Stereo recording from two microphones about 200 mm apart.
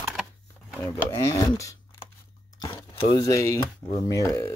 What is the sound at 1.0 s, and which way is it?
Speech, 15° left (ahead or behind).